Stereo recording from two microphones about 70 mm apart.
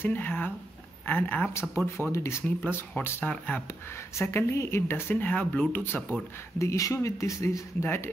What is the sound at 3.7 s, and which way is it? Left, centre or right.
Speech, left.